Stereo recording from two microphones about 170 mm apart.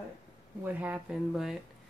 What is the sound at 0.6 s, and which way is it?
Speech, 10° right (ahead or behind).